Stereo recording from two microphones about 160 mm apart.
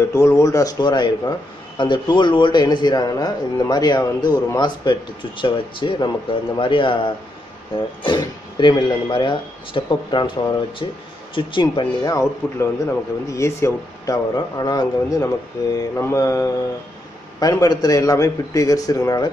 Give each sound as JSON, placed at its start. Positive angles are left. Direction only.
{"t": 0.0, "sound": "speech", "side_deg": 20}